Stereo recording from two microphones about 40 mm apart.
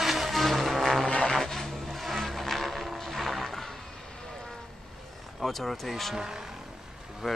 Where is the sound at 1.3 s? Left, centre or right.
Centre.